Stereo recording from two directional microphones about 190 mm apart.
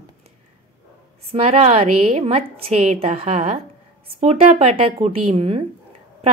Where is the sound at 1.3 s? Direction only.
30° right (ahead or behind).